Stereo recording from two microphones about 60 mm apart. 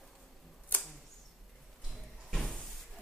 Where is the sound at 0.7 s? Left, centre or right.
Left.